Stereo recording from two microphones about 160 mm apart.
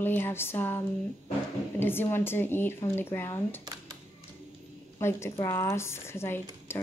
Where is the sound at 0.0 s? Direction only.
15° left (ahead or behind).